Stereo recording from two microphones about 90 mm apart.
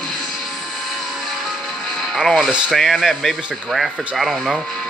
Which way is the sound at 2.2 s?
Centre (ahead or behind).